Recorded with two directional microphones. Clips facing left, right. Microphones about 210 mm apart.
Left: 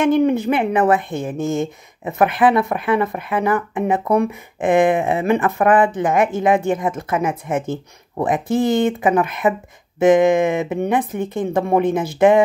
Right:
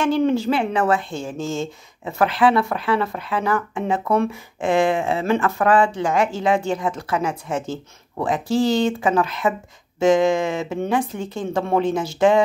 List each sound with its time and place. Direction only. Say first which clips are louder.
0.0 s speech: left 3 dB; 15° left (ahead or behind)
0.9 s a woman's voice: left 4 dB; 55° left (ahead or behind)
1.5 s a woman's voice: left 4 dB; 15° left (ahead or behind)
7.5 s a woman's voice: left 4 dB; 55° left (ahead or behind)
9.0 s speech: left 3 dB; 20° left (ahead or behind)
11.0 s a woman's voice: left 3 dB; 55° left (ahead or behind)
11.5 s speech: left 3 dB; 15° left (ahead or behind)
11.8 s a woman's voice: left 3 dB; 55° left (ahead or behind)